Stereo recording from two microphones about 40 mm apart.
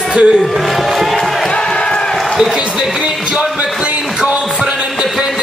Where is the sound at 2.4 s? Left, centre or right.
Centre.